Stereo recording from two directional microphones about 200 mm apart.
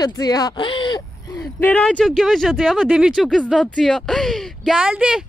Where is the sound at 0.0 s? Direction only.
20° left (ahead or behind).